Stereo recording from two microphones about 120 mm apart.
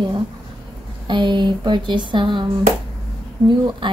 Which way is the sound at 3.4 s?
40° right (ahead or behind).